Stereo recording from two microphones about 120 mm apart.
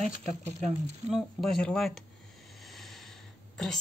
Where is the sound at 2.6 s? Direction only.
Centre (ahead or behind).